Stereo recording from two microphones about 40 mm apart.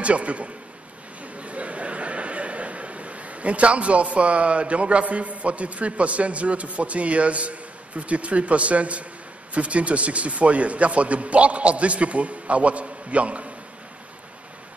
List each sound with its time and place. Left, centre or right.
0.0 s a man's voice: right